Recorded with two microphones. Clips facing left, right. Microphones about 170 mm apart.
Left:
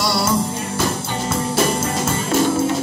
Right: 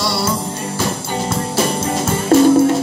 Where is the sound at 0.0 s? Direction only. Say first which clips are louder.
Even; 25° right (ahead or behind).